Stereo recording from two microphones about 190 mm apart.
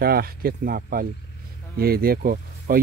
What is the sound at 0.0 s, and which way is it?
Speech, 55° right (ahead or behind).